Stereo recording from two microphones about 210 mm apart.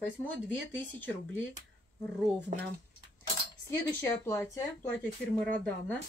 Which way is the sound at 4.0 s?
10° left (ahead or behind).